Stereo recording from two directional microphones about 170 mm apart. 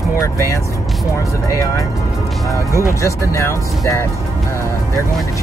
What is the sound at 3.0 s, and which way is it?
Speech, 15° left (ahead or behind).